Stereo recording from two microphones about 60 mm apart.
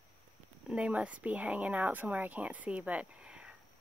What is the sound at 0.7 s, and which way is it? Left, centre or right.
Speech, right.